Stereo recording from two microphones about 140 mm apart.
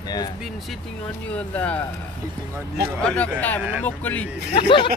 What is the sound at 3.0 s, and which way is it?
Speech, 10° left (ahead or behind).